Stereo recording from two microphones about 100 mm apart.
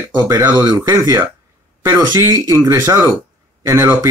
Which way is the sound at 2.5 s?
25° right (ahead or behind).